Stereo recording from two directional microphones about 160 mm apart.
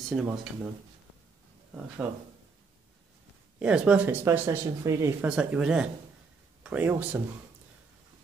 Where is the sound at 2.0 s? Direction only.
10° right (ahead or behind).